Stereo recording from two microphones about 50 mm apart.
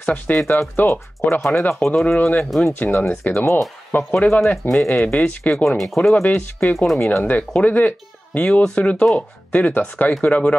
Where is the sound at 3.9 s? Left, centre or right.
Left.